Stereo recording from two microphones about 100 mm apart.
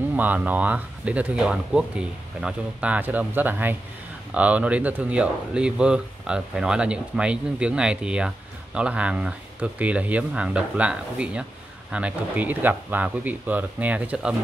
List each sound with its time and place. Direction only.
0.1 s speech: 15° right (ahead or behind)